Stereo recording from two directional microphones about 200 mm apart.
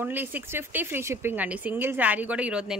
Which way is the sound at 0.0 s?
10° right (ahead or behind).